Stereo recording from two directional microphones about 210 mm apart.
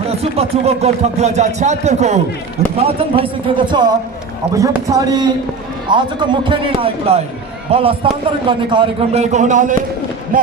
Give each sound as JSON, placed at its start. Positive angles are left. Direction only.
{"t": 0.4, "sound": "a man's voice", "side_deg": -30}